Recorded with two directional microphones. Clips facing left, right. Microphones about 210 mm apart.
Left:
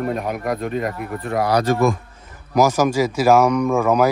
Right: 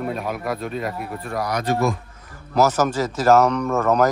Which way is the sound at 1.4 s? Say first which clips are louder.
Left 7 dB; 30° left (ahead or behind).